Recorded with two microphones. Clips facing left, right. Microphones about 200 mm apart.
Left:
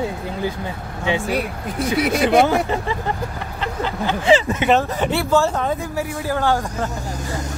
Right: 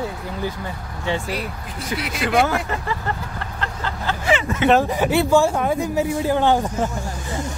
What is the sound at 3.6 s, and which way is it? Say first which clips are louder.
Vehicle: left 5 dB; 15° left (ahead or behind).